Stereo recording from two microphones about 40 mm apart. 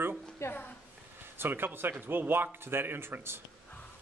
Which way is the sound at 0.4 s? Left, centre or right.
Left.